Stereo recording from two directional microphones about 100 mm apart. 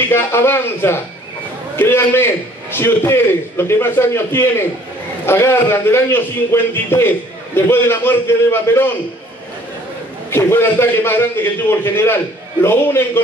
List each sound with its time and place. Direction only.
0.1 s a man's voice: 25° left (ahead or behind)
10.3 s a man's voice: 25° left (ahead or behind)